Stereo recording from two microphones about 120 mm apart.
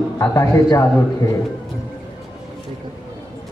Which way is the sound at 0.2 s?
25° left (ahead or behind).